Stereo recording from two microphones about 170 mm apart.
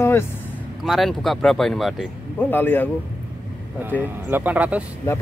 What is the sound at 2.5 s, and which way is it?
Speech, 10° left (ahead or behind).